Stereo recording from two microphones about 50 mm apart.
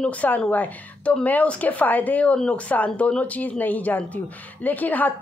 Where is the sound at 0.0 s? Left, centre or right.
Left.